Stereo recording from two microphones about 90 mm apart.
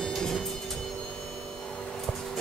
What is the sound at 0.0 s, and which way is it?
Train, 5° left (ahead or behind).